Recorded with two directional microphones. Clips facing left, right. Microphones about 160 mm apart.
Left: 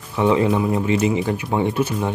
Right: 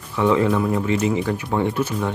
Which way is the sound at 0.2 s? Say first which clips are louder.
Left 1 dB; 20° left (ahead or behind).